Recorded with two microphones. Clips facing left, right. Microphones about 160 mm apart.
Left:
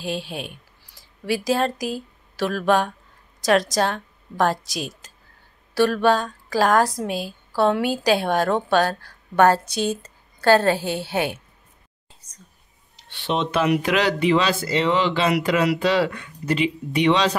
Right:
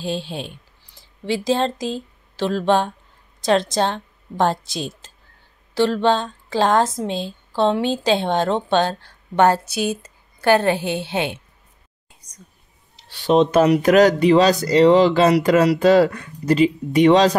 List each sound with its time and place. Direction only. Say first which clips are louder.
0.0 s a woman's voice: right 2 dB; 30° right (ahead or behind)
9.7 s a woman's voice: right 1 dB; 10° right (ahead or behind)
13.1 s speech: right 8 dB; 40° right (ahead or behind)